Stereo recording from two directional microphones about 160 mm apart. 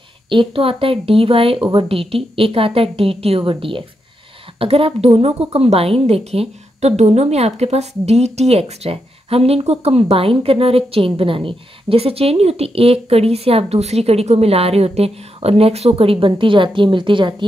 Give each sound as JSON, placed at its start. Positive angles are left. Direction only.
{"t": 0.3, "sound": "a woman's voice", "side_deg": -35}